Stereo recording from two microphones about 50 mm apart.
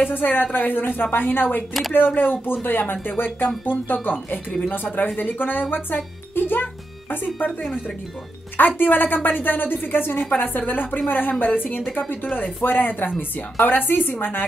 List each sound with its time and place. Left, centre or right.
0.0 s a woman's voice: left
1.7 s speech: centre
2.0 s a woman's voice: left
6.3 s music: left
8.5 s a woman's voice: left